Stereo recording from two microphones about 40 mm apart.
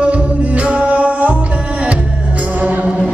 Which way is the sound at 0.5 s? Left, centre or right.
Right.